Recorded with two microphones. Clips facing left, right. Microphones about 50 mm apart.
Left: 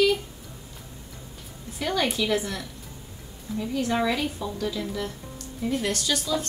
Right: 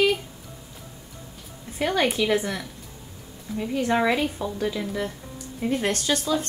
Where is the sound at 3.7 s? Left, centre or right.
Right.